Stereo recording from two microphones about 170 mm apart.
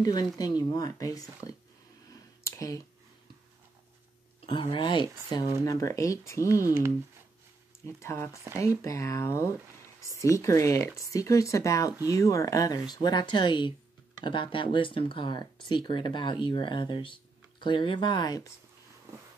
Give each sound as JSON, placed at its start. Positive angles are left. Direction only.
{"t": 0.0, "sound": "speech", "side_deg": 25}
{"t": 2.4, "sound": "a sound", "side_deg": 15}
{"t": 4.5, "sound": "speech", "side_deg": 30}
{"t": 7.8, "sound": "speech", "side_deg": 15}